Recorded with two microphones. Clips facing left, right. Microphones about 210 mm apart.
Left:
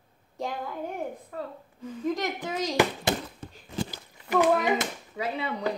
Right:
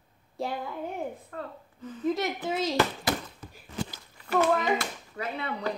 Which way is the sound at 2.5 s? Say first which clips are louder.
Left 2 dB; 15° left (ahead or behind).